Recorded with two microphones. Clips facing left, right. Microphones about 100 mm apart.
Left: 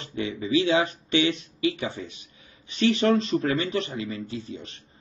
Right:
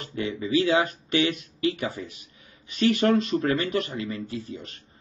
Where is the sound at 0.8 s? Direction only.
25° left (ahead or behind).